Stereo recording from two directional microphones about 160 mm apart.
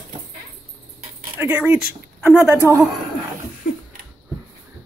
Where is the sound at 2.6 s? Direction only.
15° right (ahead or behind).